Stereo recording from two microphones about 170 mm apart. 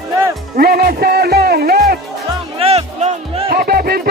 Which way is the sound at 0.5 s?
60° right (ahead or behind).